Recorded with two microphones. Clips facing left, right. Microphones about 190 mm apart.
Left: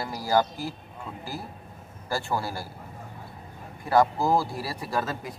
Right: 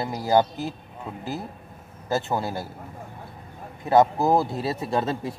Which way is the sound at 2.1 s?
20° right (ahead or behind).